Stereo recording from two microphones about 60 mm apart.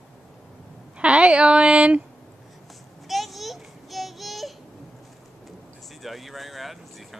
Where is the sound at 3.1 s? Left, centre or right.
Centre.